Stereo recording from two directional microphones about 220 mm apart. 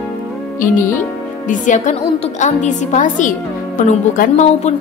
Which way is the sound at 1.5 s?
35° left (ahead or behind).